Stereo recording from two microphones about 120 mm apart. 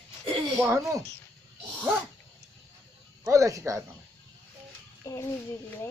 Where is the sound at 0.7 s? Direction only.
25° right (ahead or behind).